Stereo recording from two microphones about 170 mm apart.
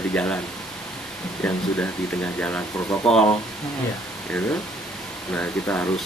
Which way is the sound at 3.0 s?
35° left (ahead or behind).